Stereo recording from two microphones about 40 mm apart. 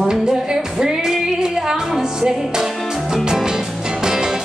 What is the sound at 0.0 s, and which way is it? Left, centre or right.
Music, centre.